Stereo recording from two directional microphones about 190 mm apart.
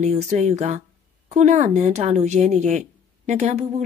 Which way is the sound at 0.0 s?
35° right (ahead or behind).